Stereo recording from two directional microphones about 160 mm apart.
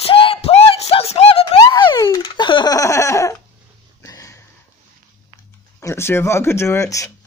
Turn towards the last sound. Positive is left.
turn(degrees=20)  # may be behind; listen again after turning